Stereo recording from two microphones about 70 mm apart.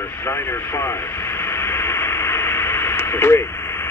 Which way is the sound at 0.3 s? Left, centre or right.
Left.